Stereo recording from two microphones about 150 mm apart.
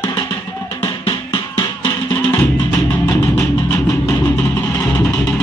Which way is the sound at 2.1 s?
15° left (ahead or behind).